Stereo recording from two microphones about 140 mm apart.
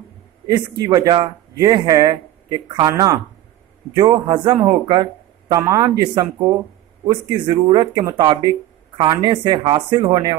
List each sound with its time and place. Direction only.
0.5 s speech: 30° right (ahead or behind)
3.9 s speech: 35° right (ahead or behind)
4.8 s a sound: 30° right (ahead or behind)
5.7 s speech: 30° right (ahead or behind)